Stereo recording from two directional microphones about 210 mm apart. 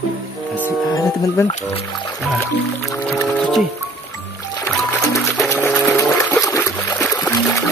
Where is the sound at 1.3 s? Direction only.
25° left (ahead or behind).